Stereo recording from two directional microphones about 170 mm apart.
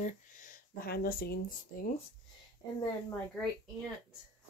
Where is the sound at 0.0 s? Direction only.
50° left (ahead or behind).